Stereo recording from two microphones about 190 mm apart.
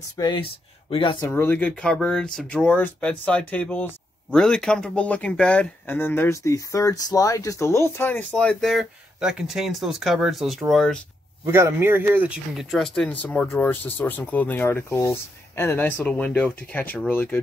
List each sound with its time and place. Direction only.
0.2 s speech: 25° left (ahead or behind)
1.2 s speech: 10° left (ahead or behind)
11.4 s speech: 15° right (ahead or behind); by 17.4 s 10° left (ahead or behind)